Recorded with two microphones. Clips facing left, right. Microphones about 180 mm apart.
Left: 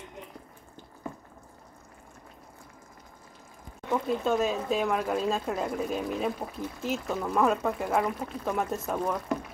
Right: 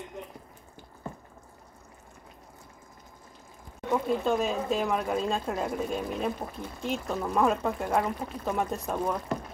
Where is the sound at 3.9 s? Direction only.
Centre (ahead or behind).